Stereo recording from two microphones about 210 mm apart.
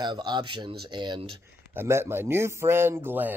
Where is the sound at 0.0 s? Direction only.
20° right (ahead or behind).